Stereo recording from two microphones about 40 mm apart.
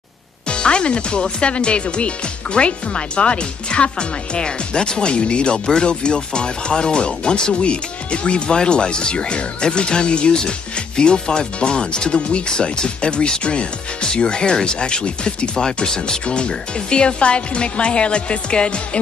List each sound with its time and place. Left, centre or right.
0.5 s speech: left